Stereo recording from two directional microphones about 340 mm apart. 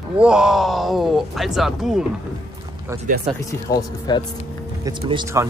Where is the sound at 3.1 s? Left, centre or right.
Right.